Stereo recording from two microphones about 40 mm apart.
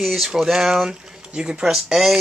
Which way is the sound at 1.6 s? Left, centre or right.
Centre.